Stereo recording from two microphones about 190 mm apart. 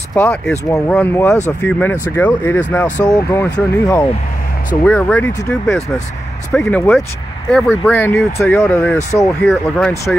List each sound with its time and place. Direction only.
0.1 s speech: 10° left (ahead or behind)